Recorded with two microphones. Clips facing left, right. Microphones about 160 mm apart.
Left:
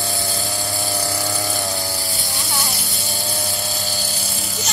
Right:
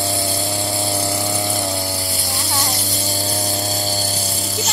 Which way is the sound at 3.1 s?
40° right (ahead or behind).